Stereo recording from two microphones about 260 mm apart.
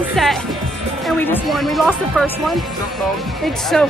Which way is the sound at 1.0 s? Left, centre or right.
Centre.